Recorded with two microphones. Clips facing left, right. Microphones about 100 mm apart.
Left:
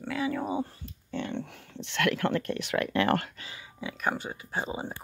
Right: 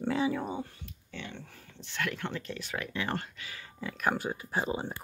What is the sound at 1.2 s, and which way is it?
Speech, 65° left (ahead or behind).